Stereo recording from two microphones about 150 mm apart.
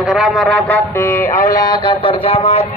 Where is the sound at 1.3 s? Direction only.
70° left (ahead or behind).